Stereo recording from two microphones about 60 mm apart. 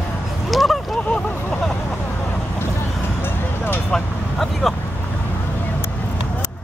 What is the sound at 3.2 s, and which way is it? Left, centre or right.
Vehicle, left.